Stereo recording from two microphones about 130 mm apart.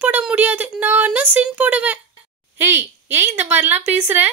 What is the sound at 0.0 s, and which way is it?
A child's voice, 10° right (ahead or behind).